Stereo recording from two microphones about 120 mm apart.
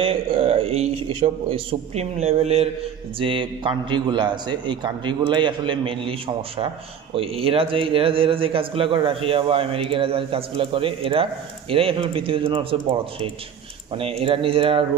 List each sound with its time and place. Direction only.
0.0 s a man's voice: 50° right (ahead or behind)
3.2 s a man's voice: 45° right (ahead or behind)
13.9 s a man's voice: 50° right (ahead or behind)